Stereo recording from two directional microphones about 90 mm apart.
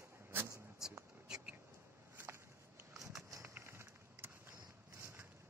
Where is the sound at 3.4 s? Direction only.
30° right (ahead or behind).